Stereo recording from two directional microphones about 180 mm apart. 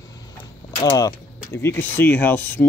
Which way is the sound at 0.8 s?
20° left (ahead or behind).